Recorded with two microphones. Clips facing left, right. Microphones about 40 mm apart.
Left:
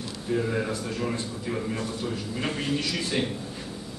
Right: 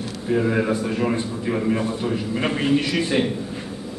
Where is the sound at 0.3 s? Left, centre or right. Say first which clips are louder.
Right 7 dB; right.